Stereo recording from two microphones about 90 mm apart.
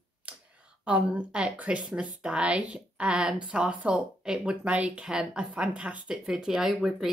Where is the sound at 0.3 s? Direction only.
15° right (ahead or behind).